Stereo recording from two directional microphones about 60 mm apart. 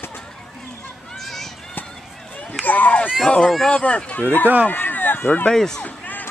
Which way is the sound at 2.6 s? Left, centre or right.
Left.